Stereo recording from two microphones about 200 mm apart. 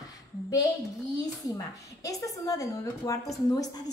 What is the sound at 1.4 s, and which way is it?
A woman's voice, 15° left (ahead or behind).